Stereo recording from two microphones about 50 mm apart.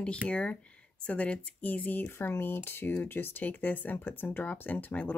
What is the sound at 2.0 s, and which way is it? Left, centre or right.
Speech, left.